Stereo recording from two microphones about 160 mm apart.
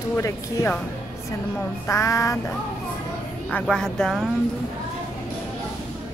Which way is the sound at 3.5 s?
5° left (ahead or behind).